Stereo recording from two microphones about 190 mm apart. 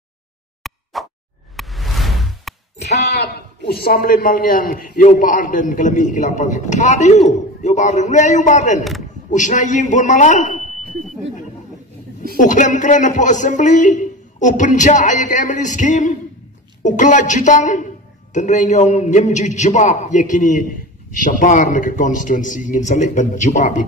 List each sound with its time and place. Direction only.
0.7 s plop: centre (ahead or behind)
1.6 s music: centre (ahead or behind)
2.8 s a man's voice: 60° left (ahead or behind); by 10.6 s 40° left (ahead or behind)
12.4 s a man's voice: 40° left (ahead or behind)